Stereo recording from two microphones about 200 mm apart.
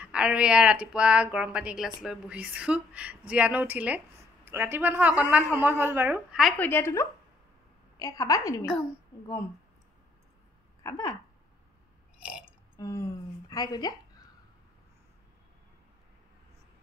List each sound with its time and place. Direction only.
0.0 s speech: 5° right (ahead or behind)
6.6 s a woman's voice: 10° left (ahead or behind)
10.8 s a sound: 15° left (ahead or behind)
12.2 s burping: 5° right (ahead or behind)
12.7 s a woman's voice: 15° left (ahead or behind)